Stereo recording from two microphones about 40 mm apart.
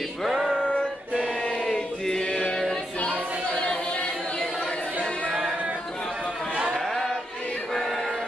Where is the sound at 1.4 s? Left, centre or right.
Left.